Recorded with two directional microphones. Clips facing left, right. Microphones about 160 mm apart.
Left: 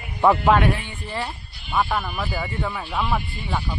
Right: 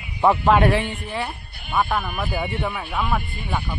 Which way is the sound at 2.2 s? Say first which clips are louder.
Right 2 dB; 10° right (ahead or behind).